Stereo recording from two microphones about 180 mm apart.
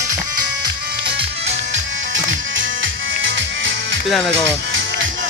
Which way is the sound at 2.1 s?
90° right.